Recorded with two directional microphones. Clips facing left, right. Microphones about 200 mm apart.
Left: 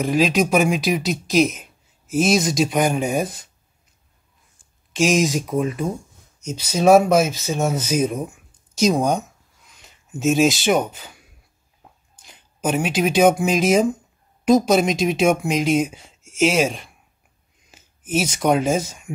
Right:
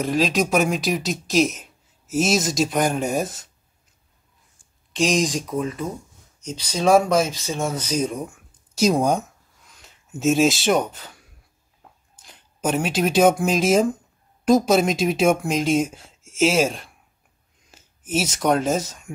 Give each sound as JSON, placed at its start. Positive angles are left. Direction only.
{"t": 0.0, "sound": "speech", "side_deg": 0}
{"t": 4.9, "sound": "speech", "side_deg": 5}
{"t": 5.5, "sound": "speech", "side_deg": 15}